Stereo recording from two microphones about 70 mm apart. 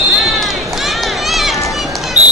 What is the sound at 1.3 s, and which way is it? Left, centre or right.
Run, centre.